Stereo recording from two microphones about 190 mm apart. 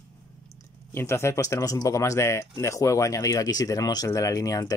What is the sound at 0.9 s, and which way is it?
Speech, 15° left (ahead or behind).